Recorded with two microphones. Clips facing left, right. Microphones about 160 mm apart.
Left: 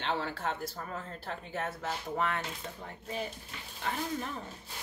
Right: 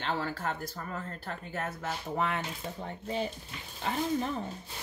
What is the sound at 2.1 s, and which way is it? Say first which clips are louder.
Speech: right 1 dB; 10° right (ahead or behind).